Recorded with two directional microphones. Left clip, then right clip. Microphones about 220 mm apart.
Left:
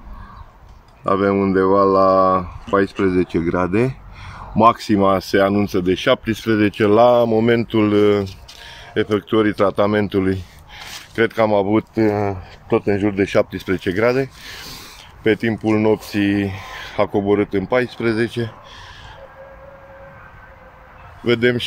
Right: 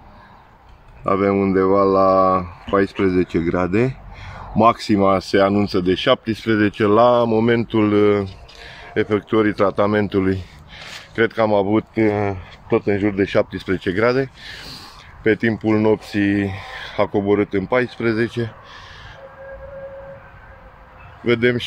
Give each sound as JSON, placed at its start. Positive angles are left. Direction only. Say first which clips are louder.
{"t": 1.0, "sound": "speech", "louder": "left 1 dB", "side_deg": 5}
{"t": 21.3, "sound": "speech", "louder": "left 1 dB", "side_deg": 5}